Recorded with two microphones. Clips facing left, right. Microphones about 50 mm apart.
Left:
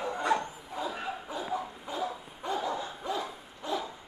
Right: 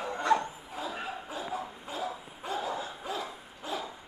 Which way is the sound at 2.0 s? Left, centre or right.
Centre.